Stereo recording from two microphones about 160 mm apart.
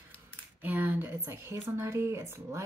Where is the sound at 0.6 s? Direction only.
10° right (ahead or behind).